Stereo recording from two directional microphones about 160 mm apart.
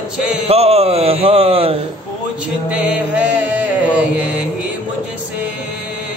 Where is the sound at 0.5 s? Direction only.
40° right (ahead or behind).